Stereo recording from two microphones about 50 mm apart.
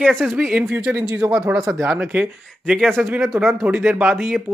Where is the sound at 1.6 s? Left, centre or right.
Centre.